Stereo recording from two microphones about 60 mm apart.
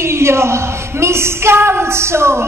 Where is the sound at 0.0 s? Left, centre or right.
Right.